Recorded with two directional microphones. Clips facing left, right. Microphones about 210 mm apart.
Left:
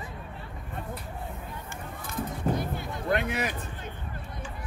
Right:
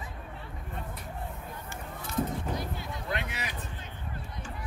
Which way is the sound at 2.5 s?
55° left (ahead or behind).